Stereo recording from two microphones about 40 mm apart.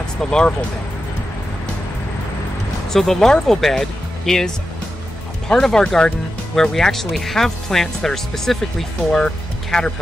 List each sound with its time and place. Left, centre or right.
0.2 s speech: centre
2.9 s speech: centre
5.5 s speech: centre
9.1 s music: centre